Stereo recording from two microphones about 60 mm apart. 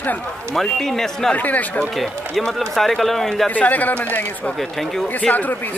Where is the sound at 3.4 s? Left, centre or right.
Left.